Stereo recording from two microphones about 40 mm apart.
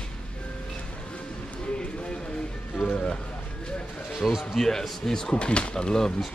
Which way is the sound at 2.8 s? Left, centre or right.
Left.